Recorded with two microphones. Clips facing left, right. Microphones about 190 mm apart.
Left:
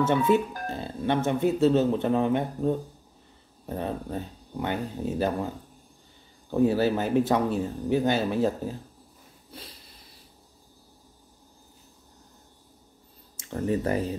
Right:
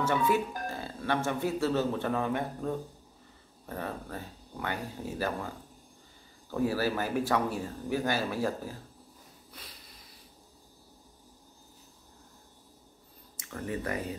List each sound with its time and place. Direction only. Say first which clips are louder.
0.0 s speech: left 5 dB; 20° left (ahead or behind)
6.5 s speech: left 7 dB; 25° left (ahead or behind)
13.4 s speech: left 8 dB; 30° left (ahead or behind)